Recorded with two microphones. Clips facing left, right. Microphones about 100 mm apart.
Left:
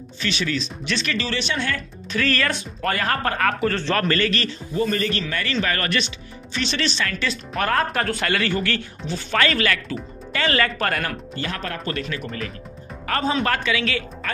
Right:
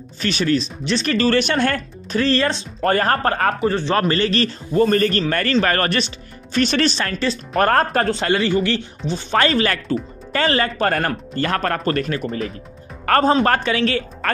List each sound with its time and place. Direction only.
0.2 s a man's voice: 45° right (ahead or behind)
2.1 s speech: 25° right (ahead or behind)
3.6 s a man's voice: 20° right (ahead or behind)
4.1 s a man's voice: 30° right (ahead or behind)
8.1 s speech: 25° right (ahead or behind)
9.4 s speech: 30° right (ahead or behind)
11.0 s a man's voice: 45° right (ahead or behind)
13.0 s speech: 55° right (ahead or behind)
13.3 s speech: 40° right (ahead or behind)